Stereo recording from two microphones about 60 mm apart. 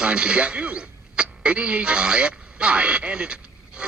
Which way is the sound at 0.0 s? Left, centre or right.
Centre.